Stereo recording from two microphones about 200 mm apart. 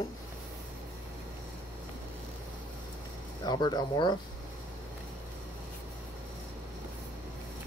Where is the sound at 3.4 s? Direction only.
20° left (ahead or behind).